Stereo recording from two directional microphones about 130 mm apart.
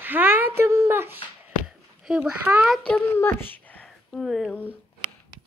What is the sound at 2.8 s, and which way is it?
A child's voice, 10° left (ahead or behind).